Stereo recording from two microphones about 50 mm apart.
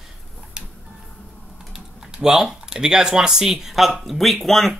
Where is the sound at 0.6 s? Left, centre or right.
Centre.